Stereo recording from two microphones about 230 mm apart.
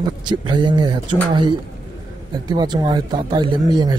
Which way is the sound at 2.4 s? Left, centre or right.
Centre.